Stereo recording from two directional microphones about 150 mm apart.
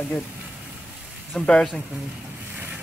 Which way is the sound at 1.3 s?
5° left (ahead or behind).